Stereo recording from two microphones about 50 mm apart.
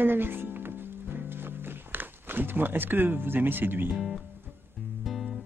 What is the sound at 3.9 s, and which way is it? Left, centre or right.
Speech, centre.